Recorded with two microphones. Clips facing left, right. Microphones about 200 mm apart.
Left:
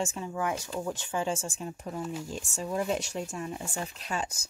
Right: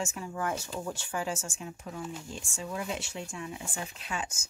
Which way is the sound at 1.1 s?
25° left (ahead or behind).